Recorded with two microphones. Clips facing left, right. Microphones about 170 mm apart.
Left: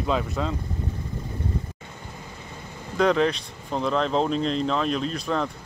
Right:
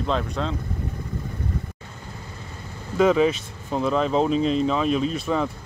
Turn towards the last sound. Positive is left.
turn(degrees=-5)  # may be behind; listen again after turning